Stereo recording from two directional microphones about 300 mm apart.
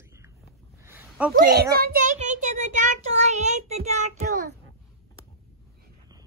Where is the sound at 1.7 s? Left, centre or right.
Right.